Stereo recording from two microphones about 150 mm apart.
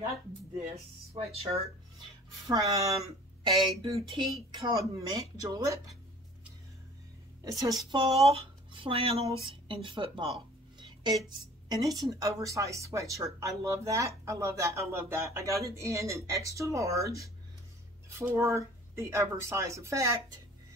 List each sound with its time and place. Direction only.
1.1 s speech: 40° right (ahead or behind)
2.4 s speech: 25° right (ahead or behind)
7.5 s speech: 25° right (ahead or behind)
8.3 s speech: 35° right (ahead or behind); by 20.2 s 20° right (ahead or behind)